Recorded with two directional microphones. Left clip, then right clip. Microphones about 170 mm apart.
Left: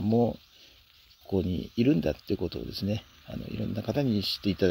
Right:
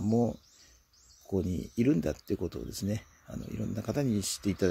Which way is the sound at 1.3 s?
25° left (ahead or behind).